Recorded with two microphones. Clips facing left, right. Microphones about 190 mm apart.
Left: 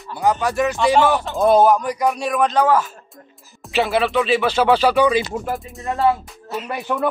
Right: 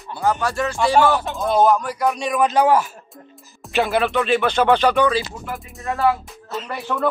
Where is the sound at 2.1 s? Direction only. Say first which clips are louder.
Even; centre (ahead or behind).